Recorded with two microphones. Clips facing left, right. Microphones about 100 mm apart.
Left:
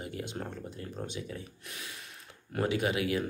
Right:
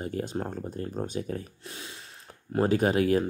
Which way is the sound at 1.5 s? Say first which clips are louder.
Right 3 dB; 30° right (ahead or behind).